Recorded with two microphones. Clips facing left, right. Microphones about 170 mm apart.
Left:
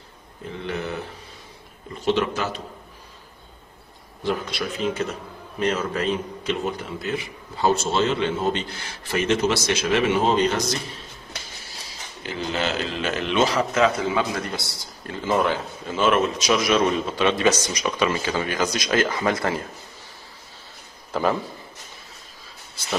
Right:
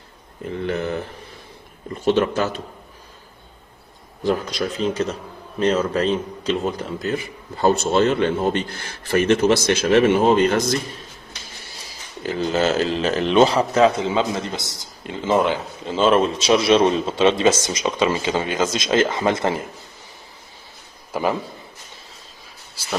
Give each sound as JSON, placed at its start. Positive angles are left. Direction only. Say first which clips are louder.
{"t": 2.0, "sound": "speech", "louder": "right 4 dB", "side_deg": -45}
{"t": 4.2, "sound": "speech", "louder": "right 4 dB", "side_deg": -40}
{"t": 12.2, "sound": "a man's voice", "louder": "right 6 dB", "side_deg": -40}
{"t": 21.1, "sound": "a man's voice", "louder": "even", "side_deg": -15}